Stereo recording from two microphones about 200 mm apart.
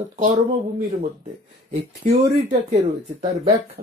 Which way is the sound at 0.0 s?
35° right (ahead or behind).